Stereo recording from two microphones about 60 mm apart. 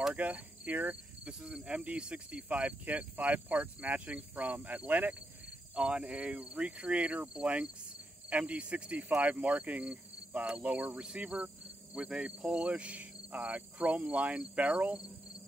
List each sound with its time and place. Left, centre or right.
0.1 s cricket: right
5.8 s cricket: centre
11.0 s speech: right
14.0 s cricket: right